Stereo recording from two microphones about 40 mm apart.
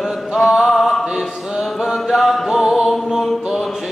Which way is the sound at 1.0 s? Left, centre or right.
Centre.